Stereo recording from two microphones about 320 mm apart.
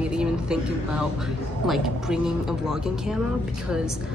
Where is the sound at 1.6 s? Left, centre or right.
Centre.